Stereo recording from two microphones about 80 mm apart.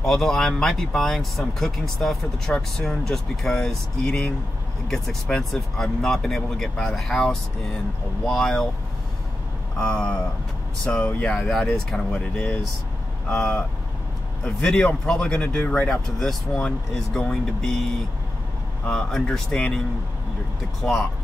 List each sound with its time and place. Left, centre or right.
0.0 s speech: centre
9.8 s speech: centre
15.9 s speech: centre
20.8 s speech: centre